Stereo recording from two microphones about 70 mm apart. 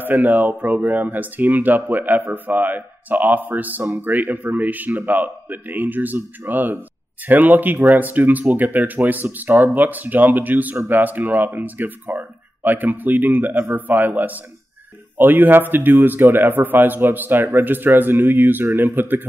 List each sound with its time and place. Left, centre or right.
0.0 s speech: right